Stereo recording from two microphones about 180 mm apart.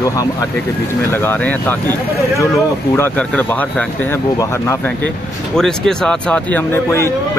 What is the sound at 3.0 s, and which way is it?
Speech, 10° left (ahead or behind).